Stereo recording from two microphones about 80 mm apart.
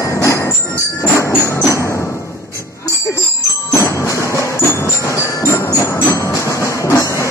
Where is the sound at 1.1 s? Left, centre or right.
Left.